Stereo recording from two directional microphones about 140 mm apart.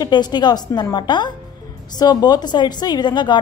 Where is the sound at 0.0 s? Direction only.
30° left (ahead or behind).